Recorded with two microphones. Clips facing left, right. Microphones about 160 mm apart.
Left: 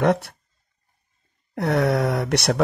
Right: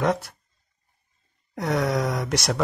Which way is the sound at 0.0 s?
60° left (ahead or behind).